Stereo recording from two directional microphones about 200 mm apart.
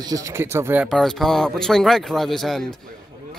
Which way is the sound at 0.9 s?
Centre (ahead or behind).